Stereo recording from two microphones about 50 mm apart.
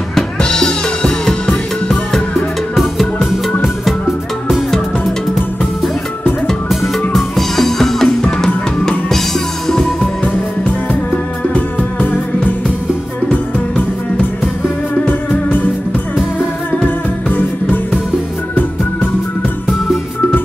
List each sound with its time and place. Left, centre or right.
0.4 s music: centre
6.7 s drum: centre
9.7 s music: centre
10.9 s music: left
13.3 s music: left
17.3 s music: left